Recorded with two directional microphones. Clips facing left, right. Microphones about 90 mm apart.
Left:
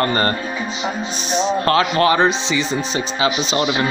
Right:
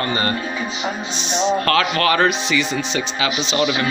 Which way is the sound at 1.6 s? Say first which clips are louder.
Left 2 dB; 25° left (ahead or behind).